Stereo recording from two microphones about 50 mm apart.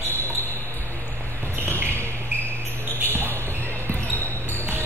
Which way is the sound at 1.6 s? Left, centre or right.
Right.